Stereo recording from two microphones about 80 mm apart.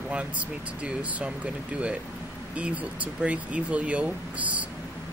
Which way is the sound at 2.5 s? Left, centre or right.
Centre.